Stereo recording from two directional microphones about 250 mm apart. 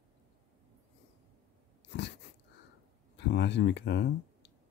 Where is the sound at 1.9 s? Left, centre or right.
Left.